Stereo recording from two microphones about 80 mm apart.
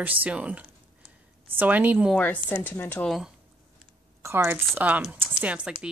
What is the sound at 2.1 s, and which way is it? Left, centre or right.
Speech, left.